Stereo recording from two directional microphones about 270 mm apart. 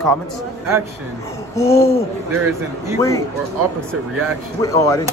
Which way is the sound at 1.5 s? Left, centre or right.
Centre.